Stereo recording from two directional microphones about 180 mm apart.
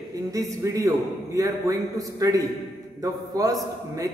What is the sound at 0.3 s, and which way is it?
A man's voice, 20° right (ahead or behind).